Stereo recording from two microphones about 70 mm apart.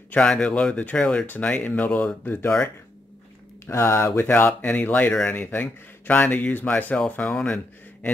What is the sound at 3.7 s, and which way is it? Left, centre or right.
Speech, left.